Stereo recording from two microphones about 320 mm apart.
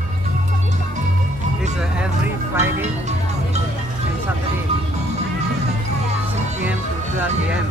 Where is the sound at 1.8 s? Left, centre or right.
Centre.